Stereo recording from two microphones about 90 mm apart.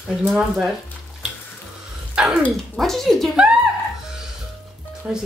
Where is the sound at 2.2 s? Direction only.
10° right (ahead or behind).